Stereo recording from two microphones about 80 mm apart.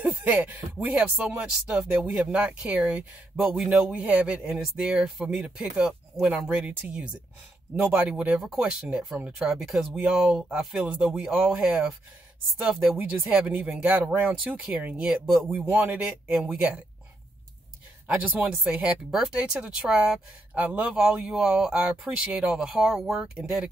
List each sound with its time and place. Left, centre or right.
0.2 s speech: centre
3.5 s speech: centre
3.9 s speech: centre
15.0 s speech: centre
18.0 s speech: right
20.5 s speech: centre